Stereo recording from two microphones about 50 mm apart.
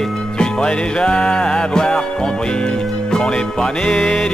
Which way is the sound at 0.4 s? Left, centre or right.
Centre.